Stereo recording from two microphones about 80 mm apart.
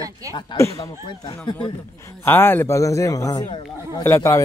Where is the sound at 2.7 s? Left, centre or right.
Left.